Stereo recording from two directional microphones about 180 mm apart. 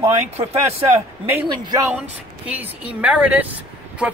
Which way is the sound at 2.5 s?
10° right (ahead or behind).